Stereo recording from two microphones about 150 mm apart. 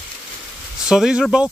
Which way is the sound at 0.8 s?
5° right (ahead or behind).